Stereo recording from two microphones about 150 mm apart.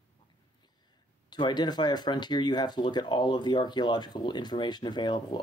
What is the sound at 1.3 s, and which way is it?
Speech, 30° left (ahead or behind).